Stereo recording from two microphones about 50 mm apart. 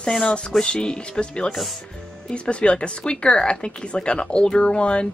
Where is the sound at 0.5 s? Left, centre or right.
Centre.